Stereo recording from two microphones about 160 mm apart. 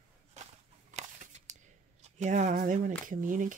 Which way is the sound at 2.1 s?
50° right (ahead or behind).